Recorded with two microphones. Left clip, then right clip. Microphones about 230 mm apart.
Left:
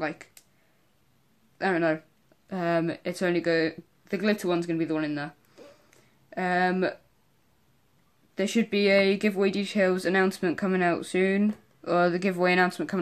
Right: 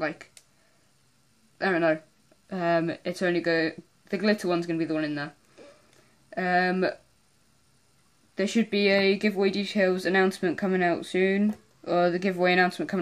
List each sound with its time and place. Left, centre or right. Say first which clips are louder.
0.0 s speech: right 1 dB; centre
1.6 s speech: right 1 dB; centre
8.4 s speech: even; centre